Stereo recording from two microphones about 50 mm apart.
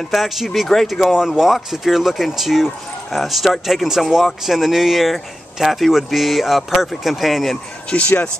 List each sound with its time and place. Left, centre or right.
0.1 s speech: centre
1.0 s speech: centre
7.9 s speech: left